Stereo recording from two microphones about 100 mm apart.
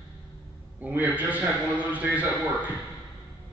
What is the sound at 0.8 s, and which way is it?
A man's voice, 15° right (ahead or behind).